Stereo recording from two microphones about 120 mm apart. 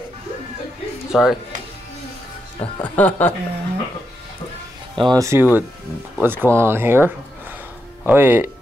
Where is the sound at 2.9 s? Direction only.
15° left (ahead or behind).